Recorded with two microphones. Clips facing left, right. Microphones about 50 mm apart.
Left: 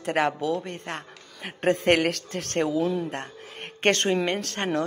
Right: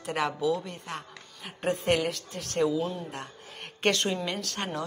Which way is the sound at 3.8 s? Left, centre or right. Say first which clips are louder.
Left 4 dB; left.